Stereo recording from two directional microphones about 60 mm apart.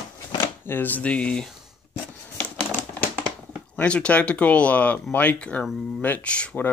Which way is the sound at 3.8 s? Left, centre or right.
Centre.